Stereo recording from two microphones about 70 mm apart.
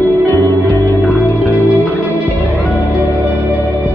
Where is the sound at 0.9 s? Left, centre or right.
Left.